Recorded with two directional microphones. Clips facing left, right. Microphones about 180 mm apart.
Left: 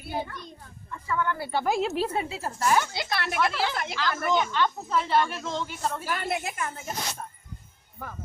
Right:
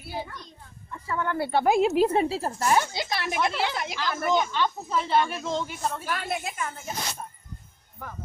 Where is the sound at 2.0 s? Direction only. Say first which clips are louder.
Right 6 dB; 35° right (ahead or behind).